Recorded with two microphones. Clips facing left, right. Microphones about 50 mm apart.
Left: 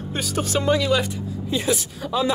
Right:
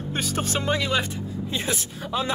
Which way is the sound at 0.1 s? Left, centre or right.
Right.